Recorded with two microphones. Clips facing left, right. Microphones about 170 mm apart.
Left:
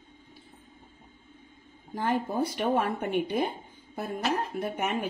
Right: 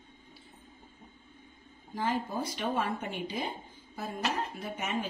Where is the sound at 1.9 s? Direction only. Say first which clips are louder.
Left 4 dB; 55° left (ahead or behind).